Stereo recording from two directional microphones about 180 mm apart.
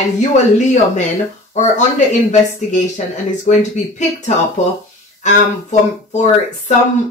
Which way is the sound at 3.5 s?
40° left (ahead or behind).